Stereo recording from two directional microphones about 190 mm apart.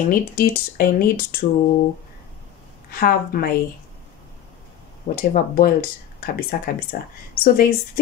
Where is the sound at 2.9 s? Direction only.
50° left (ahead or behind).